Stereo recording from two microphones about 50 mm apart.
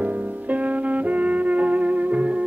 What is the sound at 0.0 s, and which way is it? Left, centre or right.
Music, right.